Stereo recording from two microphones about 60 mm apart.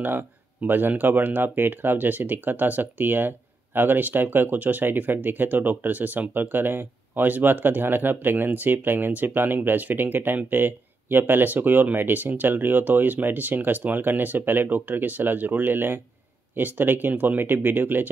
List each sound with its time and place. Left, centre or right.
0.0 s speech: right